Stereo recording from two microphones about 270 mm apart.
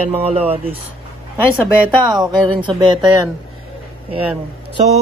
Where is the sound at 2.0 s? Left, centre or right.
Centre.